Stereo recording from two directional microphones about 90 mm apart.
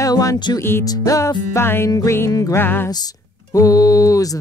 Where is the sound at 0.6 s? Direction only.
25° left (ahead or behind).